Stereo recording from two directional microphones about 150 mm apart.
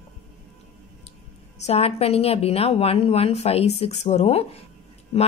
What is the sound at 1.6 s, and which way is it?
Speech, 45° left (ahead or behind).